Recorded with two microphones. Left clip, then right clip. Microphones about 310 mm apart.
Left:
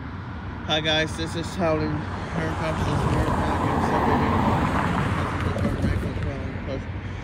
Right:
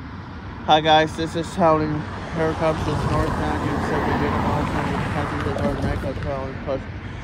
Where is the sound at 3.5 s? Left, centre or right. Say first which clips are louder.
Left 1 dB; left.